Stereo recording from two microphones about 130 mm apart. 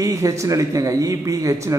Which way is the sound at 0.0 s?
25° right (ahead or behind).